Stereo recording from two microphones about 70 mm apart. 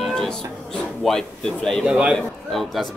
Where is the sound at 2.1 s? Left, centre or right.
Centre.